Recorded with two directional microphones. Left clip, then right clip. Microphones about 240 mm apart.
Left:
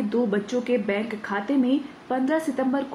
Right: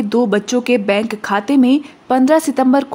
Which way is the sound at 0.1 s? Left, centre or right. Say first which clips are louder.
Right 10 dB; right.